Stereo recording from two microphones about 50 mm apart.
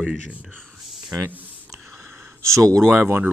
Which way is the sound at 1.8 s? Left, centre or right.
Right.